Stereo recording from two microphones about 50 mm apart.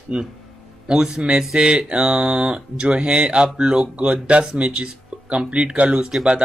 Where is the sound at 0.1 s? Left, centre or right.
Centre.